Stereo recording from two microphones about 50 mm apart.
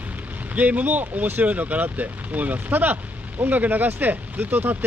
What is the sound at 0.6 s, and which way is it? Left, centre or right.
Speech, right.